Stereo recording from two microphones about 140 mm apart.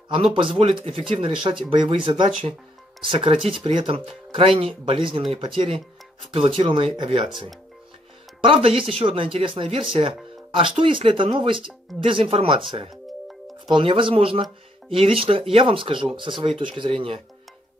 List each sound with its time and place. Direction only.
0.1 s speech: 40° right (ahead or behind)
8.4 s speech: 40° right (ahead or behind)
13.7 s speech: 35° right (ahead or behind)